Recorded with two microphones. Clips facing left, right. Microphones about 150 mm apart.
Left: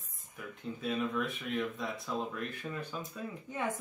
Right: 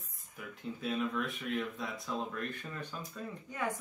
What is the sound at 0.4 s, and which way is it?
Speech, centre (ahead or behind).